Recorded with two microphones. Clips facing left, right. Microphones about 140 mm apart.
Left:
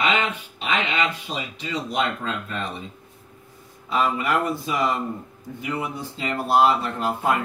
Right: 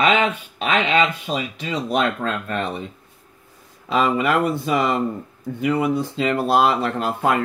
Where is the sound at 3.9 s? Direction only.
90° right.